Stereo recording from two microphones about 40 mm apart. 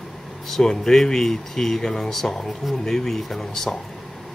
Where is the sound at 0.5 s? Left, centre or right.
Centre.